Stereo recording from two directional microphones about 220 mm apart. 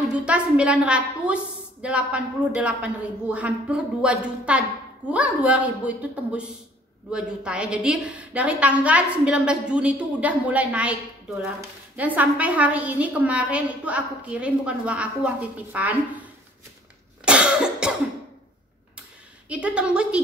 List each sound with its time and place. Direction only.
0.0 s a woman's voice: 5° right (ahead or behind)
17.2 s cough: 5° right (ahead or behind)
19.5 s a woman's voice: 5° right (ahead or behind)